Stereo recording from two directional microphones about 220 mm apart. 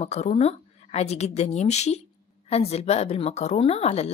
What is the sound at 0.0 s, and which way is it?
A woman's voice, 30° left (ahead or behind).